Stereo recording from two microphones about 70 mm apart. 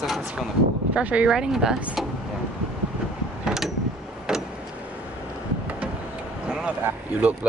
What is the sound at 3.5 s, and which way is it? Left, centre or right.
Mechanisms, centre.